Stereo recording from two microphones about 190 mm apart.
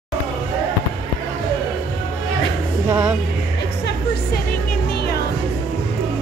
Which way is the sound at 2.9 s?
10° right (ahead or behind).